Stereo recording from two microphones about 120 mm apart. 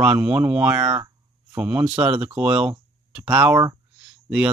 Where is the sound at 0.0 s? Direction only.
10° right (ahead or behind).